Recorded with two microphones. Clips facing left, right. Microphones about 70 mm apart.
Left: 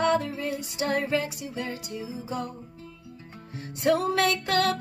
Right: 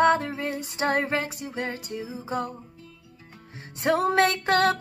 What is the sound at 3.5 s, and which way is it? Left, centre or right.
Music, right.